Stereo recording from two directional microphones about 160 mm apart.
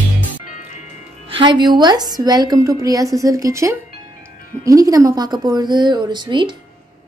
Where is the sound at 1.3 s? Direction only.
30° right (ahead or behind).